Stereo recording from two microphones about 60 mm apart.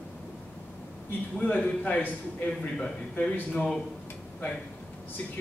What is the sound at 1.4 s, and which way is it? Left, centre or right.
A man's voice, left.